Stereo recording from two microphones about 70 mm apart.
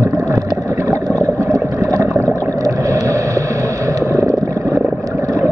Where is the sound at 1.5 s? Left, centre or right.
Right.